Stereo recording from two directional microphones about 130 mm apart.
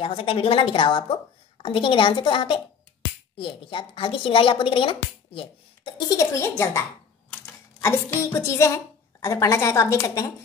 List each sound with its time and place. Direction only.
0.0 s a woman's voice: 45° left (ahead or behind)
5.9 s a woman's voice: 25° left (ahead or behind)